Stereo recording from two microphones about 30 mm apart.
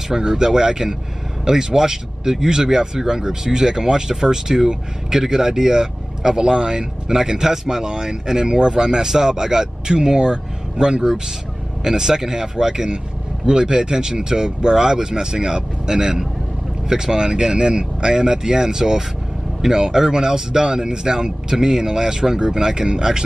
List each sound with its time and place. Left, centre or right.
0.1 s speech: right